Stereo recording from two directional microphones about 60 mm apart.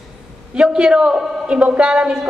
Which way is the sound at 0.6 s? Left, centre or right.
Centre.